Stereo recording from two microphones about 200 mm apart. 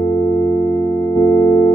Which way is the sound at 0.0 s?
15° left (ahead or behind).